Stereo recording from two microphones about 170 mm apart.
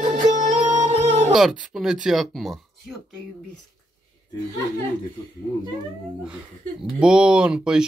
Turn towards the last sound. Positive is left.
turn(degrees=-5)  # may be behind; listen again after turning